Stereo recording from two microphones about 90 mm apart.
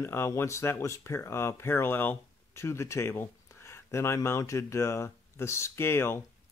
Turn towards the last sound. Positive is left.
turn(degrees=25)  # may be behind; listen again after turning